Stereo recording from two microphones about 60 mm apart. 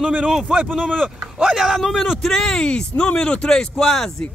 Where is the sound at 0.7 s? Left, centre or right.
Centre.